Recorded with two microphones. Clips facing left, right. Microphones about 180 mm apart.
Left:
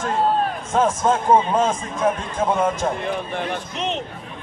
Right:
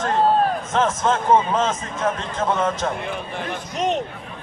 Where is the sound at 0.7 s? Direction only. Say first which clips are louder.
Left 3 dB; 10° left (ahead or behind).